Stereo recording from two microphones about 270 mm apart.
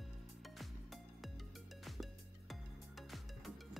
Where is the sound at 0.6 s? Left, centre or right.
Centre.